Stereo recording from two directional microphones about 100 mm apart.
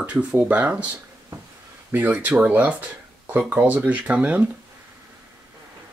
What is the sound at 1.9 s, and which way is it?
Speech, 20° right (ahead or behind).